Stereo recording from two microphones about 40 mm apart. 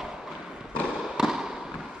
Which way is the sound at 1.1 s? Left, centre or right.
Centre.